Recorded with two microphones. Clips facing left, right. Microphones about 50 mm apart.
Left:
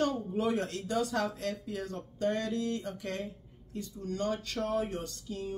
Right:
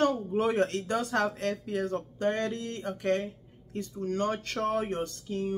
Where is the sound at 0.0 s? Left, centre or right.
Right.